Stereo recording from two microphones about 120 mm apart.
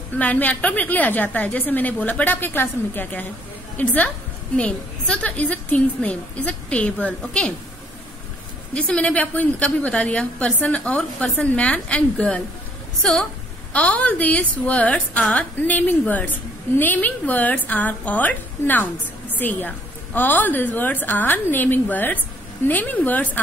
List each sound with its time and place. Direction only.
0.2 s a woman's voice: 15° left (ahead or behind)
8.7 s a woman's voice: 10° left (ahead or behind)